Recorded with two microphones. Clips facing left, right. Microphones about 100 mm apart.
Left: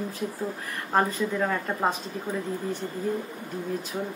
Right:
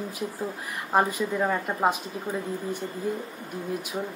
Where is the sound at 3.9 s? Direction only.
10° right (ahead or behind).